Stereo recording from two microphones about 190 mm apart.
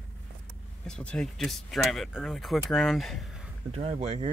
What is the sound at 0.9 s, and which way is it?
Speech, 5° left (ahead or behind).